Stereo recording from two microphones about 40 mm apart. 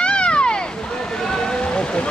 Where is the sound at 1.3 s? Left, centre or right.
Centre.